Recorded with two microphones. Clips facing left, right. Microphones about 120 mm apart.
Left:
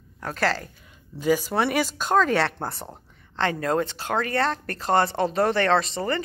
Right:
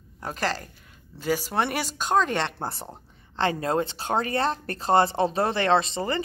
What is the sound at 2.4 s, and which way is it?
A woman's voice, 25° right (ahead or behind).